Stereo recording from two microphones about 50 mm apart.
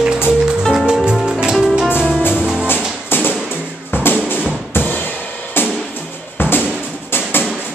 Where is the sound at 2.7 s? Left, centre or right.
Left.